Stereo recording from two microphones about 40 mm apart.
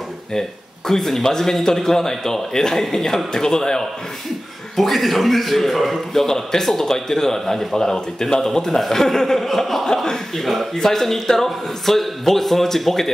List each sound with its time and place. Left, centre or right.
0.3 s a man's voice: centre
4.7 s a man's voice: centre
6.2 s a man's voice: centre